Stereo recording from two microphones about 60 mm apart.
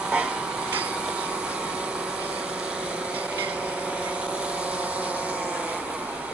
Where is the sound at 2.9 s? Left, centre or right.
Right.